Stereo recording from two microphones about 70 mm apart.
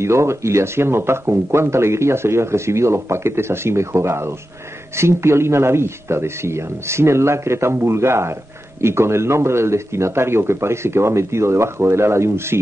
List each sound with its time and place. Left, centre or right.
0.0 s speech: right